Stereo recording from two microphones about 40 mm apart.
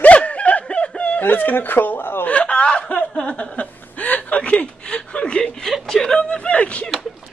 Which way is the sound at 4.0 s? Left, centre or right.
Left.